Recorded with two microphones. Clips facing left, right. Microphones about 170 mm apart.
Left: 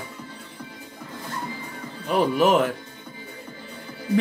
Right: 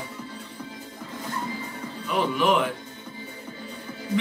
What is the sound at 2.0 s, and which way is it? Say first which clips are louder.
Speech: left 4 dB; 45° left (ahead or behind).